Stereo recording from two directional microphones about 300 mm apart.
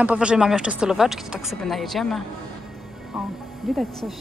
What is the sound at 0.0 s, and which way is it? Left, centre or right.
Speech, centre.